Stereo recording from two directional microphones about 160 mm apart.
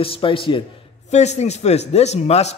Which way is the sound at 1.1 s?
45° left (ahead or behind).